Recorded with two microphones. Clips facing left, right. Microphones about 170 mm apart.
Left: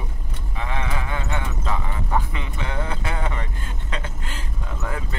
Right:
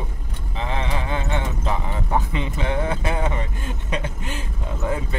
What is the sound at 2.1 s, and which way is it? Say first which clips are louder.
Vehicle: right 3 dB; 20° right (ahead or behind).